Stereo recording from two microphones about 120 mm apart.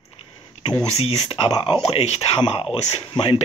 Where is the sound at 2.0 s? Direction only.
60° left (ahead or behind).